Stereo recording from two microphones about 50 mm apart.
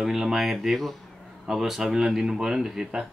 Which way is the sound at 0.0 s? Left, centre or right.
Centre.